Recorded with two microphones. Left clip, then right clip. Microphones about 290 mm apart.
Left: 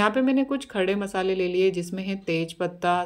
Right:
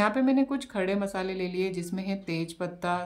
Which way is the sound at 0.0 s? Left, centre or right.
Centre.